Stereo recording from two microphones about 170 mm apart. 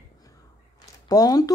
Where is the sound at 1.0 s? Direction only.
20° left (ahead or behind).